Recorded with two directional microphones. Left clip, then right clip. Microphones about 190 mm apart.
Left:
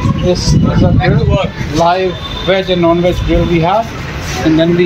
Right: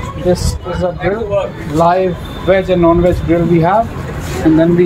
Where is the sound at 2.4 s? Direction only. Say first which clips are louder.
Right 1 dB; 5° right (ahead or behind).